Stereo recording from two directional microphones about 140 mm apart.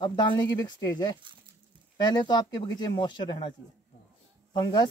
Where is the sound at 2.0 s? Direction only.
30° left (ahead or behind).